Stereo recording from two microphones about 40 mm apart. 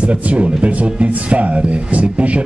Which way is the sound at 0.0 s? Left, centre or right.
Right.